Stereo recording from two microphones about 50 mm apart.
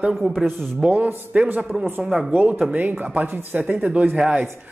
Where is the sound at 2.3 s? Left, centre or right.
Right.